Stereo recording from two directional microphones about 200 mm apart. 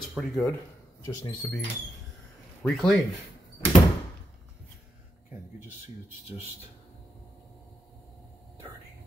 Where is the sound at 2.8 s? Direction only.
Centre (ahead or behind).